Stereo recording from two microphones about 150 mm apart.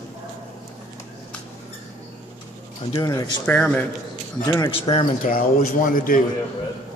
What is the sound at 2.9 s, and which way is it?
Speech, 25° left (ahead or behind).